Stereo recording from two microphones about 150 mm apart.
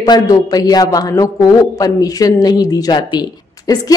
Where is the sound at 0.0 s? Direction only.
25° left (ahead or behind).